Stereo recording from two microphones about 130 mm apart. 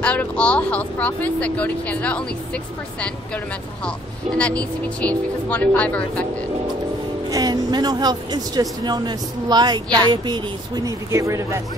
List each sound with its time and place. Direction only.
0.0 s speech: 10° left (ahead or behind)
4.4 s speech: 10° left (ahead or behind)
7.2 s speech: 30° right (ahead or behind)